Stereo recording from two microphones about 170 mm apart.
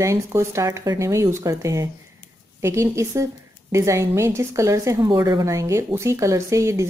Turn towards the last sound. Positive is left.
turn(degrees=-15)  # may be behind; listen again after turning